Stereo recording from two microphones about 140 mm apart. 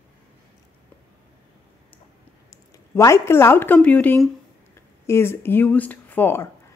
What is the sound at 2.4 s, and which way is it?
Speech, 20° left (ahead or behind).